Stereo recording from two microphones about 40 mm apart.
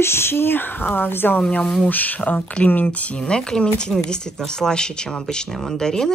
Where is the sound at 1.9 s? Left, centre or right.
Left.